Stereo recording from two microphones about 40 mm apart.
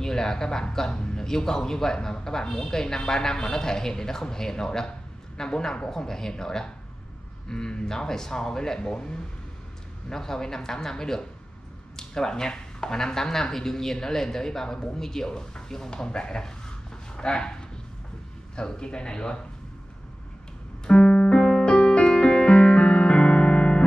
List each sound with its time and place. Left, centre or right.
0.0 s speech: centre
20.8 s keyboard: left